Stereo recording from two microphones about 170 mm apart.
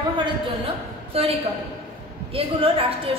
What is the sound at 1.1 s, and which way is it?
A woman's voice, 35° right (ahead or behind).